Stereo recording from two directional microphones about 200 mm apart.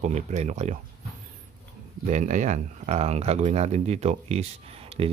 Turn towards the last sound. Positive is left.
turn(degrees=-30)  # may be behind; listen again after turning